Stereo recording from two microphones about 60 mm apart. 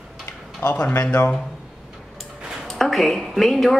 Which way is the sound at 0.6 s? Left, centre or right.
Left.